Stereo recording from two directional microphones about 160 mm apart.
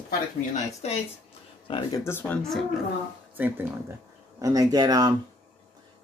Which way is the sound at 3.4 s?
10° right (ahead or behind).